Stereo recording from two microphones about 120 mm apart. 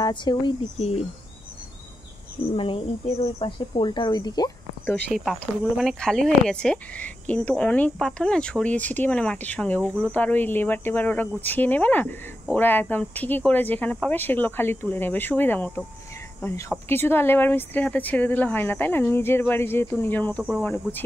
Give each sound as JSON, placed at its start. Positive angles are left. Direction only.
{"t": 0.0, "sound": "speech", "side_deg": 40}
{"t": 0.7, "sound": "speech", "side_deg": 60}
{"t": 2.5, "sound": "speech", "side_deg": 50}
{"t": 5.1, "sound": "speech", "side_deg": 0}
{"t": 16.9, "sound": "speech", "side_deg": 20}